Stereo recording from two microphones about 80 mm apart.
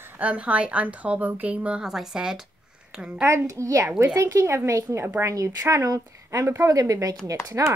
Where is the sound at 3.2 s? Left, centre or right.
Right.